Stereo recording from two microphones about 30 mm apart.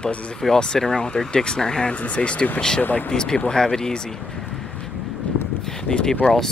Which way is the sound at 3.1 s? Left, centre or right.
Left.